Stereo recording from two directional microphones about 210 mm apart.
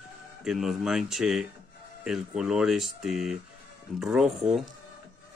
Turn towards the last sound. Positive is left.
turn(degrees=-5)  # may be behind; listen again after turning